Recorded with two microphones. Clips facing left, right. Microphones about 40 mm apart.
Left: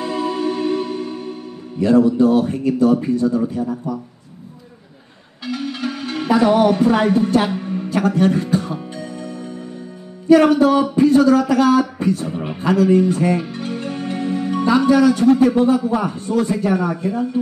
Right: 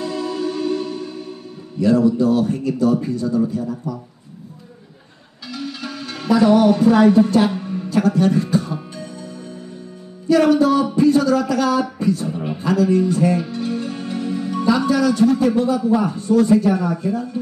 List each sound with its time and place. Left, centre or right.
0.0 s music: left
1.8 s a man's voice: left
5.4 s music: left
7.5 s a sound: centre
8.1 s speech: left
8.9 s music: left
10.2 s a man's voice: left